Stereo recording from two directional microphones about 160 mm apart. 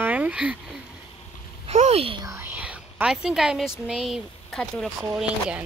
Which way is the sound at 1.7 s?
40° right (ahead or behind).